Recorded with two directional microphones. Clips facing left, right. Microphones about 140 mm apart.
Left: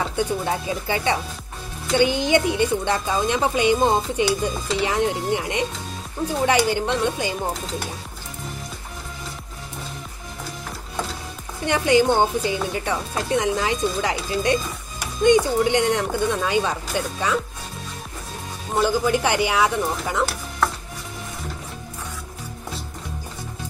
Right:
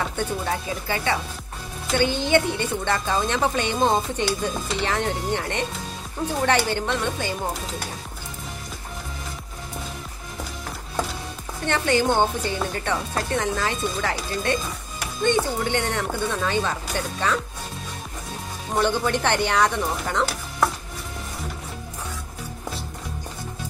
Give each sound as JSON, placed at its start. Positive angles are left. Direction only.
{"t": 0.1, "sound": "a woman's voice", "side_deg": 15}
{"t": 11.6, "sound": "a woman's voice", "side_deg": 15}
{"t": 18.8, "sound": "a woman's voice", "side_deg": 5}